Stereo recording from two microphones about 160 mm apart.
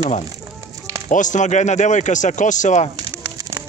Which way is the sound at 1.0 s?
50° left (ahead or behind).